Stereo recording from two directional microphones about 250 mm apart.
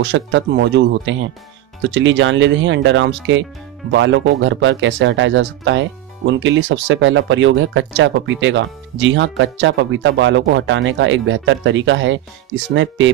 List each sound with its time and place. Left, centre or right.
0.0 s speech: right